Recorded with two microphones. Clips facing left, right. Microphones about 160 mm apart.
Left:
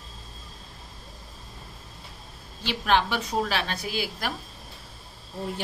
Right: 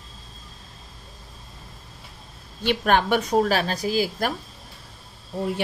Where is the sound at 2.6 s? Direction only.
50° right (ahead or behind).